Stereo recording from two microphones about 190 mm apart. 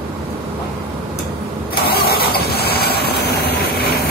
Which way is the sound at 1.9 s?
55° left (ahead or behind).